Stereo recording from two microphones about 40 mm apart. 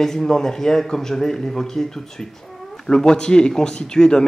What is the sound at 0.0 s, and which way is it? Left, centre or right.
Speech, centre.